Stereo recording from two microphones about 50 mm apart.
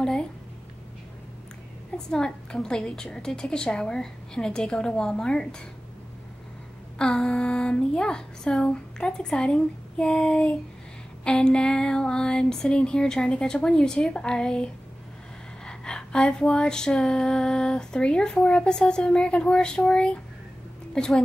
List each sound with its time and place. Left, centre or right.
0.0 s a sound: centre
2.0 s female singing: centre
7.0 s speech: centre
11.2 s female singing: centre